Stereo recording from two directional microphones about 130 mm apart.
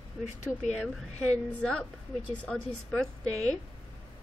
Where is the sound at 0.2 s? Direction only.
65° left (ahead or behind).